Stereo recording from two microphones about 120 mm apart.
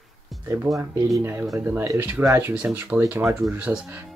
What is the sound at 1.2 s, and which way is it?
Speech, 20° right (ahead or behind).